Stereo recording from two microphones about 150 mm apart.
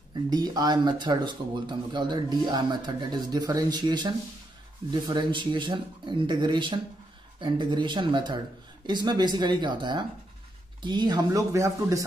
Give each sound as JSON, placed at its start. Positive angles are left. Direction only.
{"t": 0.3, "sound": "a man's voice", "side_deg": -25}